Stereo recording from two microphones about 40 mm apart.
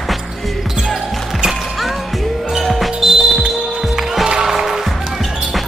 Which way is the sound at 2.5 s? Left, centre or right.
Centre.